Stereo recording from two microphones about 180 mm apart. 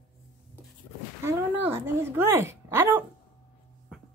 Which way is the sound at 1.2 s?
15° right (ahead or behind).